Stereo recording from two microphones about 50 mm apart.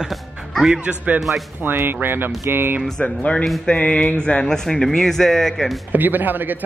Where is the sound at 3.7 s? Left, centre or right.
Left.